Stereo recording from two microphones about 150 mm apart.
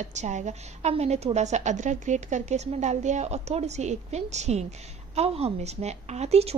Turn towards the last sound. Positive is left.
turn(degrees=-45)  # may be behind; listen again after turning